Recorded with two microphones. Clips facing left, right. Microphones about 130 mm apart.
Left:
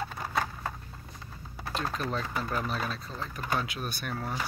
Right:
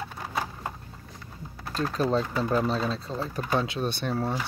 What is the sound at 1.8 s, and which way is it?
Speech, 30° right (ahead or behind).